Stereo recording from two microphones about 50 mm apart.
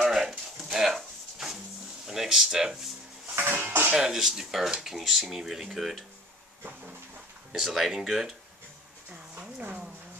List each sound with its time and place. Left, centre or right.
0.0 s a sound: centre
2.0 s speech: centre
3.5 s speech: right
3.9 s speech: centre
7.5 s speech: centre
9.6 s speech: right